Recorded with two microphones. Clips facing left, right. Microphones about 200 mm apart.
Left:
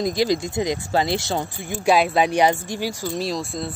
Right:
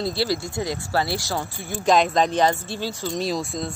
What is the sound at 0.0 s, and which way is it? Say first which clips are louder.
Speech: left 4 dB; 15° left (ahead or behind).